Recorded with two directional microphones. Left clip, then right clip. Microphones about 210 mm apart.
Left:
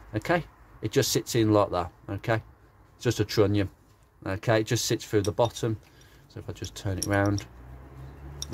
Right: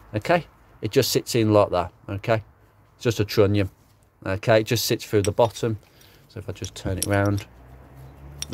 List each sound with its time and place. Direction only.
0.1 s speech: 25° right (ahead or behind)